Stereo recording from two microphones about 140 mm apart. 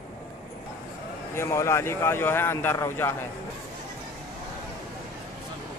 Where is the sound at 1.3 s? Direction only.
20° left (ahead or behind).